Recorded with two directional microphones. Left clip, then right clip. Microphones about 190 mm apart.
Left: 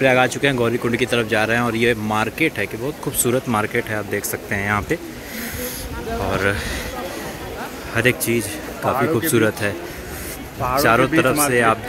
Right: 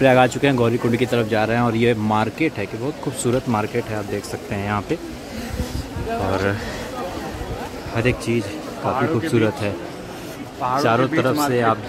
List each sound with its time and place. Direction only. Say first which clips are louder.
0.0 s speech: right 1 dB; 20° right (ahead or behind); by 4.9 s 5° right (ahead or behind)
7.9 s speech: left 3 dB; 5° right (ahead or behind)
8.9 s speech: left 1 dB; 35° left (ahead or behind)
9.3 s speech: left 2 dB; centre (ahead or behind)
10.8 s speech: left 4 dB; 5° right (ahead or behind)